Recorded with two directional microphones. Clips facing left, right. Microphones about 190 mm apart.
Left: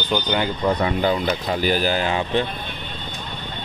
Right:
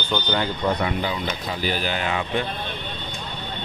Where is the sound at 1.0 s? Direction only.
45° left (ahead or behind).